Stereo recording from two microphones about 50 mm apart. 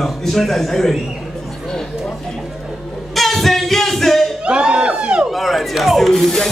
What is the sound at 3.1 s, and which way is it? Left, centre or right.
Singing, centre.